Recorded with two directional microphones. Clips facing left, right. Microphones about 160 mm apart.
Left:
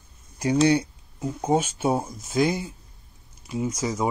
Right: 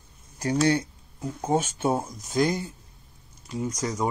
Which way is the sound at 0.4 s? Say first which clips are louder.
Left 3 dB; 15° left (ahead or behind).